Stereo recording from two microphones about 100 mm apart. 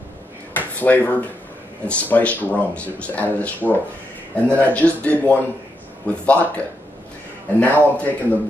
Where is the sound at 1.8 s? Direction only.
15° left (ahead or behind).